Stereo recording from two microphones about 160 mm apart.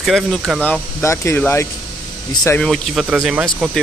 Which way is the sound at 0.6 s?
15° left (ahead or behind).